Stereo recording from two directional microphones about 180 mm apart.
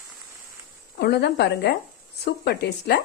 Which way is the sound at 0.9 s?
65° left (ahead or behind).